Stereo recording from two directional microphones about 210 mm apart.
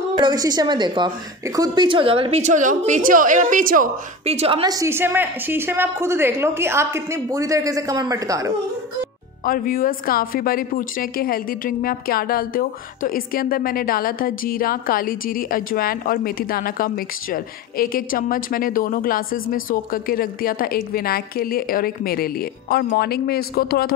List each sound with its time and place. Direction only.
0.2 s a woman's voice: 20° right (ahead or behind)
9.4 s speech: 45° left (ahead or behind)